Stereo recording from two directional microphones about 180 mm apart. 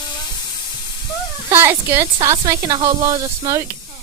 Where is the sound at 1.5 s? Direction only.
10° right (ahead or behind).